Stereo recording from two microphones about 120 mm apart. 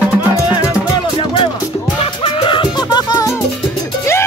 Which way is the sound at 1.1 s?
45° left (ahead or behind).